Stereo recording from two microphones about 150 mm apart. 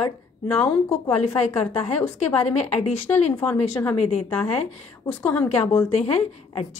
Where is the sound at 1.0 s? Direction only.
45° left (ahead or behind).